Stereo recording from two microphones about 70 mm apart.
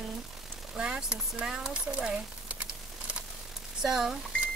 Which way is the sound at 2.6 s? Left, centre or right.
Centre.